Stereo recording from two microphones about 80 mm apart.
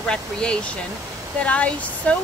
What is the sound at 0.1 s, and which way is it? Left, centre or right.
Speech, centre.